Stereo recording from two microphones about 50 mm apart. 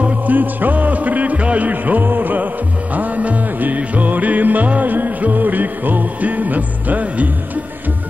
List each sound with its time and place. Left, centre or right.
0.3 s music: right